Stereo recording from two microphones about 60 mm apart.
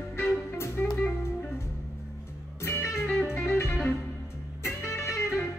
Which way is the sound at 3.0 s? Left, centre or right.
Centre.